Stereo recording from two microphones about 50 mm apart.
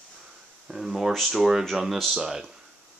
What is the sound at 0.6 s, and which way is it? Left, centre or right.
Speech, centre.